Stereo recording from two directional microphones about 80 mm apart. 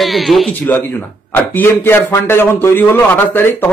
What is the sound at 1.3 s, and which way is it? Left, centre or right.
A man's voice, left.